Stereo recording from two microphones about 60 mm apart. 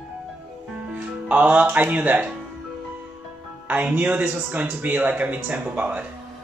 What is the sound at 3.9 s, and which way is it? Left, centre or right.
Speech, right.